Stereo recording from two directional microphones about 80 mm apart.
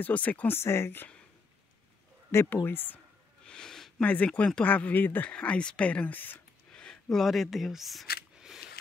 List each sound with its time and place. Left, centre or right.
0.0 s speech: centre
2.3 s speech: left
3.4 s a sound: centre
4.0 s speech: centre
6.7 s speech: centre
8.4 s scissors: centre